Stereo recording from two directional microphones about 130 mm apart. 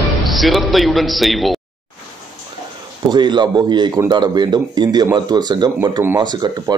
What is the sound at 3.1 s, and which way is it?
A man's voice, 35° right (ahead or behind).